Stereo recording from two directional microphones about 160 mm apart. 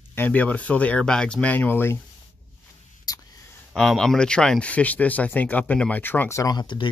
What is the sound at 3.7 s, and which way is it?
Speech, 5° left (ahead or behind).